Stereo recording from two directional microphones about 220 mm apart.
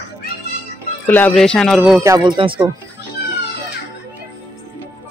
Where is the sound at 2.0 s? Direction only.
15° right (ahead or behind).